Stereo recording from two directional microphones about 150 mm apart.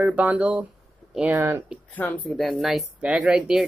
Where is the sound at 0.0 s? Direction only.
10° right (ahead or behind).